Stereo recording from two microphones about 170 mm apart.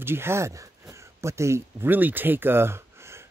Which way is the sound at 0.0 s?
15° right (ahead or behind).